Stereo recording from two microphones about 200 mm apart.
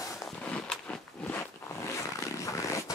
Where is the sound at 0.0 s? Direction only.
15° left (ahead or behind).